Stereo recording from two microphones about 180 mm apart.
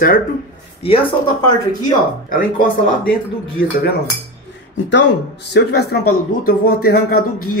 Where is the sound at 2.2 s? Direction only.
50° left (ahead or behind).